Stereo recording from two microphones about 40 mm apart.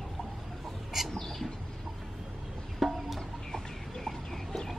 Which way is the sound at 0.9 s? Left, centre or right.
Centre.